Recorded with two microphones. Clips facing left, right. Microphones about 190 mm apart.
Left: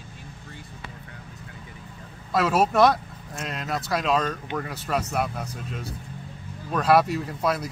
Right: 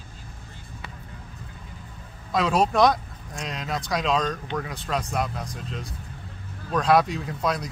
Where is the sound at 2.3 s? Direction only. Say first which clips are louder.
Left 1 dB; 5° left (ahead or behind).